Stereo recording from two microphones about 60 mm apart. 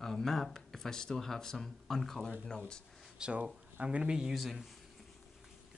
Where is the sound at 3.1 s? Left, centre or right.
Centre.